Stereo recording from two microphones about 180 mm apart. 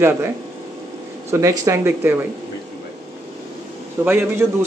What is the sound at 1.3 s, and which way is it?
Speech, 20° right (ahead or behind).